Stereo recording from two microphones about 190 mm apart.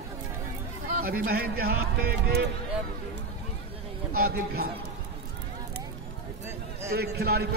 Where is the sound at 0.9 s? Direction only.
50° right (ahead or behind).